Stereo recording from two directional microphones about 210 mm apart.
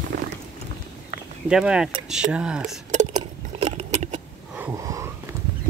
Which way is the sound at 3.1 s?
30° right (ahead or behind).